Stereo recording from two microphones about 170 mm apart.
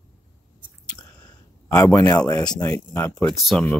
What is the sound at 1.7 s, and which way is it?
Speech, 15° left (ahead or behind).